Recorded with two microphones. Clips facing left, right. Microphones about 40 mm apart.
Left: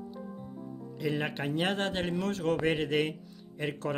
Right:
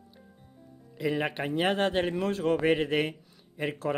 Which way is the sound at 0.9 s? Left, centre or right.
Centre.